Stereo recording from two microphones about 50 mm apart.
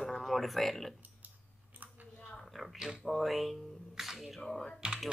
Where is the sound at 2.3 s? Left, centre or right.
Centre.